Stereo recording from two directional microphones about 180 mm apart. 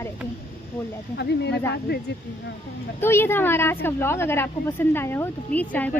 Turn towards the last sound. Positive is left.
turn(degrees=10)  # may be behind; listen again after turning